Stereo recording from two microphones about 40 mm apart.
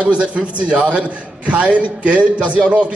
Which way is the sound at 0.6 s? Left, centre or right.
Right.